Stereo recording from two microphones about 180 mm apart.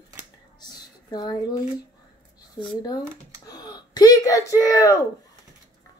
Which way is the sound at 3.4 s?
20° left (ahead or behind).